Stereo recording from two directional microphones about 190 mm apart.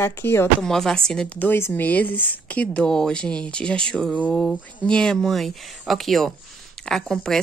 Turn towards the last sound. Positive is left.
turn(degrees=5)  # may be behind; listen again after turning